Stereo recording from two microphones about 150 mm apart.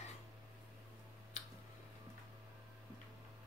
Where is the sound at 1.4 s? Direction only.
50° left (ahead or behind).